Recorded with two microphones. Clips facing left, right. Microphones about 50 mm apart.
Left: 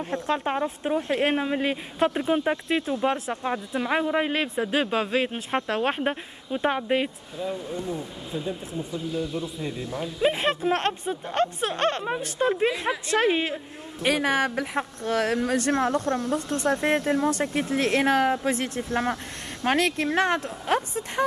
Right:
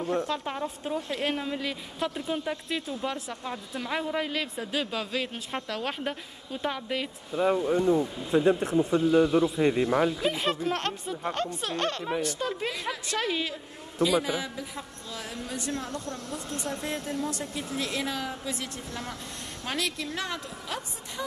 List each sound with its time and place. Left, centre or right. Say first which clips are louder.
0.0 s speech: left 2 dB; left
7.5 s speech: right 7 dB; right
8.3 s a man's voice: right 9 dB; right
10.2 s speech: left 4 dB; left
14.0 s speech: left 3 dB; left